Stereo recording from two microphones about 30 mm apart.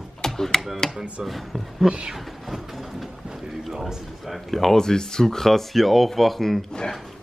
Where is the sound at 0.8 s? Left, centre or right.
Centre.